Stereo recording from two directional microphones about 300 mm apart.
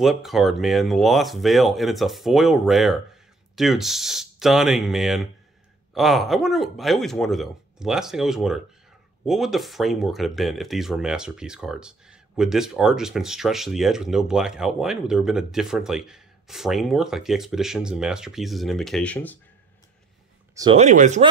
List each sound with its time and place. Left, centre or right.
0.0 s speech: centre
20.5 s speech: centre